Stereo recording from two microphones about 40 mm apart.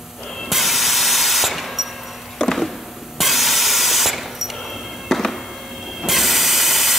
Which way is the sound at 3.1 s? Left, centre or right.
Centre.